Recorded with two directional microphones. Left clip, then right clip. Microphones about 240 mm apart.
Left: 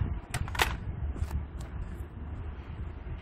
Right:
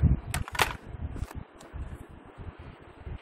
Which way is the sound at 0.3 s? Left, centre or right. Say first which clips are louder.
Right 1 dB; right.